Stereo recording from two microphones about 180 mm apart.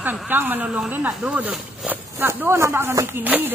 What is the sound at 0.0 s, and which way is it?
Speech, 10° right (ahead or behind).